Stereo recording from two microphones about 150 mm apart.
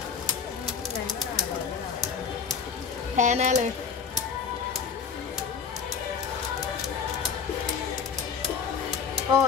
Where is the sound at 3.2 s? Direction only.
55° right (ahead or behind).